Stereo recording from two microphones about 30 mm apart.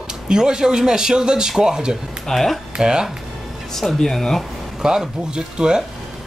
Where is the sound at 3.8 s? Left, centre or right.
Centre.